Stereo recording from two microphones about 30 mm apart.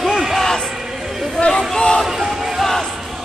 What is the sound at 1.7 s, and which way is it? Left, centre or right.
Music, left.